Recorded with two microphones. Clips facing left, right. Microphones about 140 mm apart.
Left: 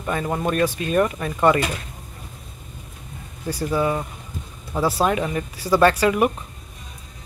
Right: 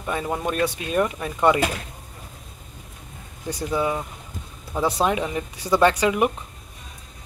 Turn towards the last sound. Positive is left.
turn(degrees=-15)  # may be behind; listen again after turning